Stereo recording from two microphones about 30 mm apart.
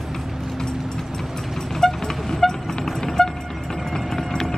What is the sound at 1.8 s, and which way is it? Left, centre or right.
Vehicle, centre.